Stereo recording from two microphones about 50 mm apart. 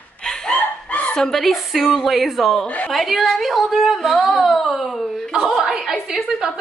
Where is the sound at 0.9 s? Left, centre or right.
Left.